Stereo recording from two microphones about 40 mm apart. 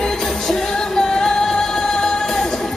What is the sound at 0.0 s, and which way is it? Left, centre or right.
Music, centre.